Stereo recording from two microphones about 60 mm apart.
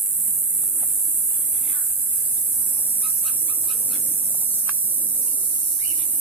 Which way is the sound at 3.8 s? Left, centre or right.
Left.